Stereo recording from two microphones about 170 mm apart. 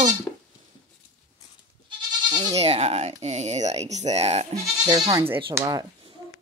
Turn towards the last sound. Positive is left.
turn(degrees=-20)  # may be behind; listen again after turning